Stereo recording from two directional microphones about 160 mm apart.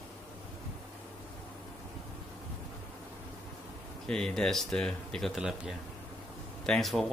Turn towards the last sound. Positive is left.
turn(degrees=0)  # may be behind; listen again after turning